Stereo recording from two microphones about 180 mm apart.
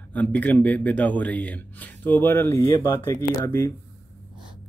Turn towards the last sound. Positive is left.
turn(degrees=15)  # may be behind; listen again after turning